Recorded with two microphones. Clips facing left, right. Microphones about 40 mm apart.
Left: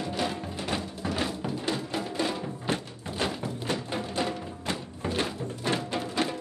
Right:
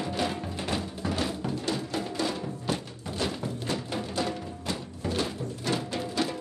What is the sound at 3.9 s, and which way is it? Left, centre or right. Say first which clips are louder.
Music: even; centre.